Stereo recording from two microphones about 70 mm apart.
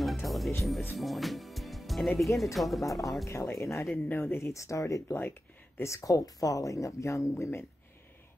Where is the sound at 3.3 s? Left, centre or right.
Left.